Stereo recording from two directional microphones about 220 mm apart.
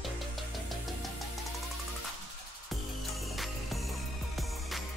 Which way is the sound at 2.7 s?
Centre (ahead or behind).